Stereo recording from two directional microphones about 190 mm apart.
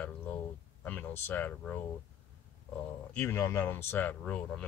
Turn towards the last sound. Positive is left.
turn(degrees=5)  # may be behind; listen again after turning